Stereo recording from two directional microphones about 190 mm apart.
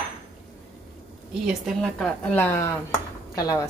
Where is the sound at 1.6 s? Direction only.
5° left (ahead or behind).